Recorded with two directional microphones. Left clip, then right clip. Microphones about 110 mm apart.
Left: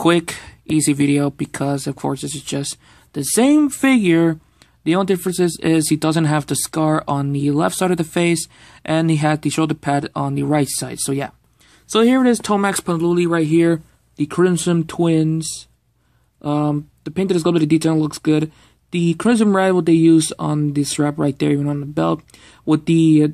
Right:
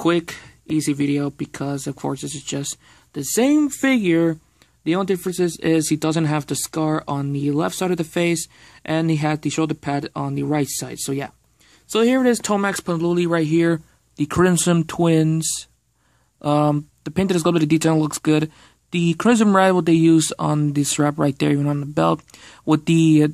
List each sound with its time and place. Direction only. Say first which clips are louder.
0.0 s speech: left 4 dB; 5° left (ahead or behind); by 12.9 s 10° right (ahead or behind)
12.9 s speech: left 2 dB; 35° right (ahead or behind)
15.2 s speech: even; 45° right (ahead or behind)